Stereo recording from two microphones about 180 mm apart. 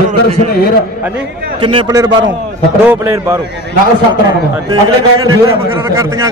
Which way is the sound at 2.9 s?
15° right (ahead or behind).